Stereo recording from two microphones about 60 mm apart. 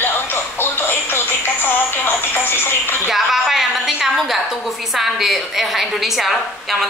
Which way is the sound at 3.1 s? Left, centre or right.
Centre.